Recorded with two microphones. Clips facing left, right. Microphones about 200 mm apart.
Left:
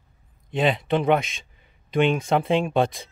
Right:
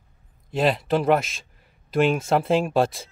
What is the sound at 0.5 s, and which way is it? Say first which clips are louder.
Speech: right 1 dB; centre (ahead or behind).